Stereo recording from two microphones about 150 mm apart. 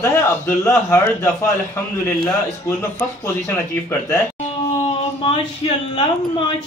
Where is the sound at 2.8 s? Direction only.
15° left (ahead or behind).